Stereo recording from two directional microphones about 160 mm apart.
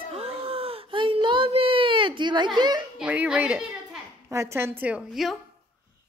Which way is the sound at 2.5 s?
25° right (ahead or behind).